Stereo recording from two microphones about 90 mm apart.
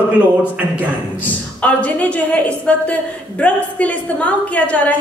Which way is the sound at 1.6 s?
15° left (ahead or behind).